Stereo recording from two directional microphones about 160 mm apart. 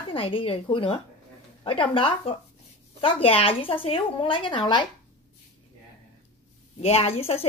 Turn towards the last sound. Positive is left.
turn(degrees=40)  # may be behind; listen again after turning